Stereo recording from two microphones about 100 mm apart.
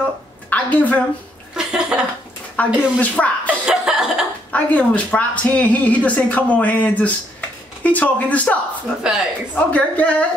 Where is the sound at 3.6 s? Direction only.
5° right (ahead or behind).